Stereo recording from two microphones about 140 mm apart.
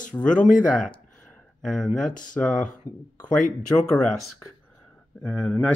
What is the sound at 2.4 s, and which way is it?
Speech, 10° left (ahead or behind).